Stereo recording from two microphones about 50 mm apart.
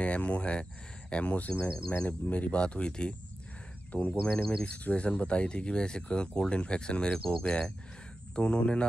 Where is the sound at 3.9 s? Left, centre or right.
Left.